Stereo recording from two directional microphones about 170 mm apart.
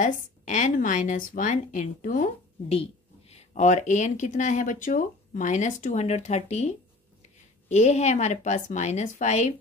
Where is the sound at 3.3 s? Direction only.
40° left (ahead or behind).